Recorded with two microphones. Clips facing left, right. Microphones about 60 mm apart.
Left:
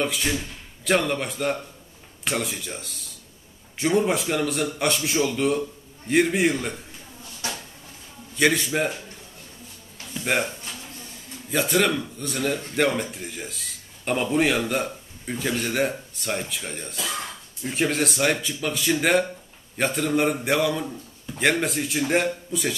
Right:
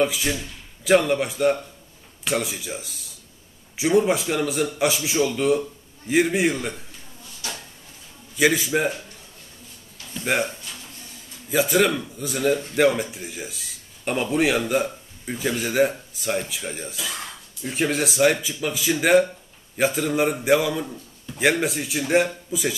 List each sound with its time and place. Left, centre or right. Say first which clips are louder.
0.0 s speech: right 3 dB; centre
7.4 s a sound: left 2 dB; left
8.4 s speech: right 1 dB; centre
10.1 s speech: right 1 dB; centre
11.5 s speech: right 2 dB; centre